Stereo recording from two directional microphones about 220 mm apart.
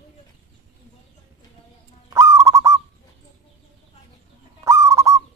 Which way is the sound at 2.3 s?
15° right (ahead or behind).